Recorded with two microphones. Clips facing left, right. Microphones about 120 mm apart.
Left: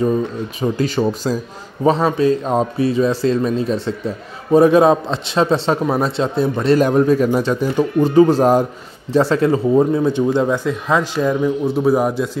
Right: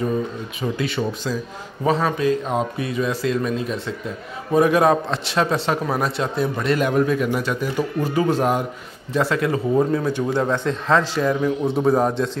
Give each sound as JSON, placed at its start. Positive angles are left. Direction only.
{"t": 0.6, "sound": "a man's voice", "side_deg": 35}
{"t": 10.5, "sound": "speech", "side_deg": 10}